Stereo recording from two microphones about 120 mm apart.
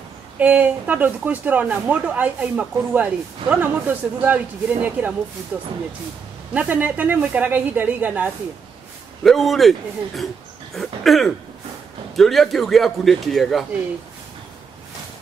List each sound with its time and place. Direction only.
0.4 s speech: 15° right (ahead or behind)
9.2 s speech: centre (ahead or behind)